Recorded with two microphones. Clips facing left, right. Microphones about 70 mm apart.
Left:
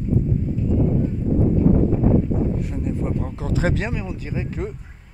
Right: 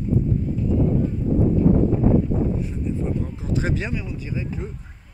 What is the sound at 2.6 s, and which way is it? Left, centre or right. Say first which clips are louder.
Speech: left 1 dB; left.